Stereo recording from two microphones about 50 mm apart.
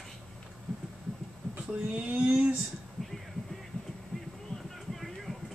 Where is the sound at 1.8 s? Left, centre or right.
Right.